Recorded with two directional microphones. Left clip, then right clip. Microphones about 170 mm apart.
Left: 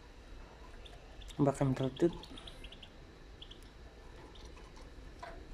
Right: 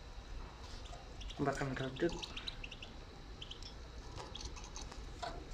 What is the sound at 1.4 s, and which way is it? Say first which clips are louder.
Speech: left 5 dB; 30° left (ahead or behind).